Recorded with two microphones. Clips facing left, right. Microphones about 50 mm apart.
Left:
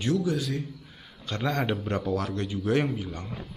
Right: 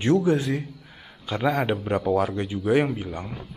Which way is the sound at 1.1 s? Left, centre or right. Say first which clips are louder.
Right 5 dB; centre.